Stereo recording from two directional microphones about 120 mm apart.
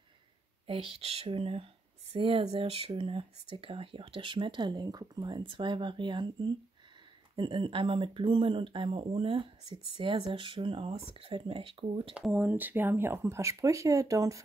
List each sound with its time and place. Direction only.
0.7 s speech: 55° right (ahead or behind)
12.3 s speech: 15° right (ahead or behind)